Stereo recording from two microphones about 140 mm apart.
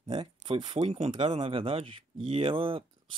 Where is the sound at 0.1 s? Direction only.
40° right (ahead or behind).